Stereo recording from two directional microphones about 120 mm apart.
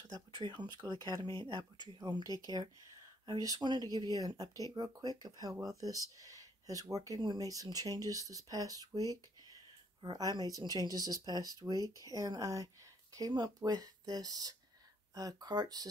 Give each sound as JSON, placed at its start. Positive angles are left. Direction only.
{"t": 0.4, "sound": "speech", "side_deg": -40}